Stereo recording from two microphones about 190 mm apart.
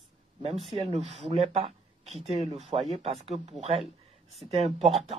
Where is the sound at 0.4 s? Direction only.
30° right (ahead or behind).